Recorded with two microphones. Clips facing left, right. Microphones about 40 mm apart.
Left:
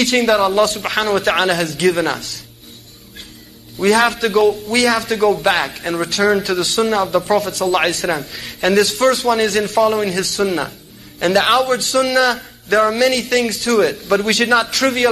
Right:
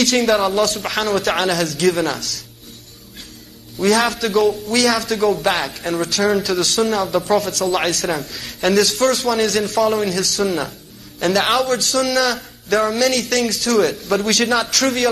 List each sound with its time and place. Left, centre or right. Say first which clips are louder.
0.0 s a man's voice: left 1 dB; left
0.3 s speech: left 2 dB; centre
0.8 s a man's voice: left 2 dB; left
3.8 s a man's voice: left 3 dB; left
4.8 s a man's voice: left 2 dB; left
7.1 s speech: left 1 dB; centre
7.4 s a man's voice: left 2 dB; left
9.8 s speech: left 1 dB; centre
10.1 s a man's voice: left 1 dB; left
12.2 s a man's voice: left 3 dB; centre
12.7 s a man's voice: left 3 dB; left